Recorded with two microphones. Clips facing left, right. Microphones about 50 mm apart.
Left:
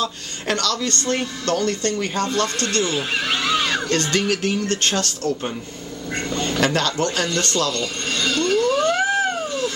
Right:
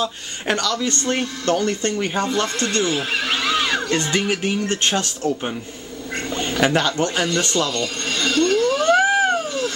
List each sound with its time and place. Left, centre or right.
0.0 s speech: centre
3.0 s speech: centre
6.6 s speech: centre
7.8 s a sound: centre